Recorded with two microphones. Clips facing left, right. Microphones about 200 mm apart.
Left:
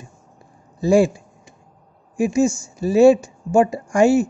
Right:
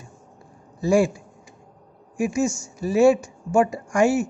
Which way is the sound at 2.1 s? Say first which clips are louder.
Left 5 dB; 25° left (ahead or behind).